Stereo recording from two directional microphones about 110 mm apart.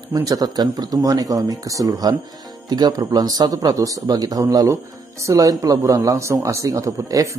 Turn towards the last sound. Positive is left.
turn(degrees=-30)  # may be behind; listen again after turning